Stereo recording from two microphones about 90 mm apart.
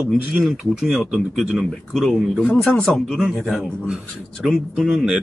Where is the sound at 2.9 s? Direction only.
5° right (ahead or behind).